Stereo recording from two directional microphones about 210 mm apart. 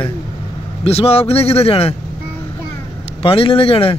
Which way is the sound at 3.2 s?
25° left (ahead or behind).